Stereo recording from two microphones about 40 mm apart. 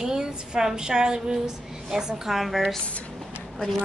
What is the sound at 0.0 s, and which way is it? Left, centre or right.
A woman's voice, centre.